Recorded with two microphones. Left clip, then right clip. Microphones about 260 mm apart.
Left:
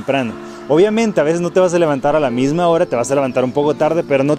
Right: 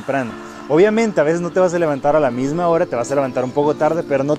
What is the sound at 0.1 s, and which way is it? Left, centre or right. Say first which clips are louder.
Speech: left 3 dB; left.